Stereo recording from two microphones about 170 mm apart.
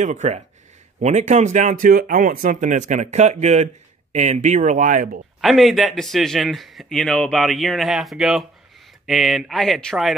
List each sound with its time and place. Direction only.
0.0 s speech: 45° right (ahead or behind)
5.4 s speech: centre (ahead or behind)